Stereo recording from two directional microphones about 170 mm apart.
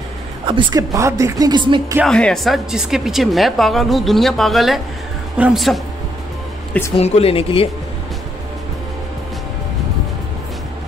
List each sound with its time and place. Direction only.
0.5 s speech: 25° right (ahead or behind)
2.0 s a woman's voice: 5° left (ahead or behind)
7.0 s speech: 35° left (ahead or behind)